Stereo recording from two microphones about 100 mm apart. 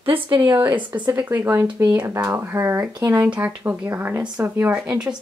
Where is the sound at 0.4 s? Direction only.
20° right (ahead or behind).